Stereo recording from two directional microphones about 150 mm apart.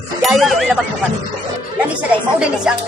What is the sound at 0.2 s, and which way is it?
Speech, centre (ahead or behind).